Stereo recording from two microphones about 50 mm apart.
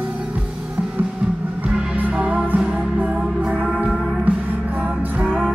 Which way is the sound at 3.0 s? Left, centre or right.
Right.